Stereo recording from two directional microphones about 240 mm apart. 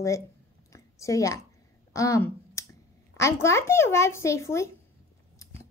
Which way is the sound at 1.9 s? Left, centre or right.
Centre.